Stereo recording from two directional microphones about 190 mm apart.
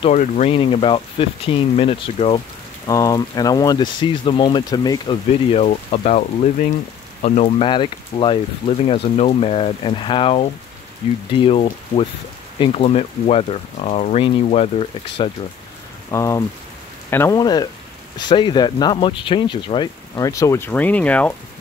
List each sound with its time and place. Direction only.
0.1 s speech: 40° left (ahead or behind)
2.9 s speech: 20° left (ahead or behind)
16.1 s speech: 15° left (ahead or behind)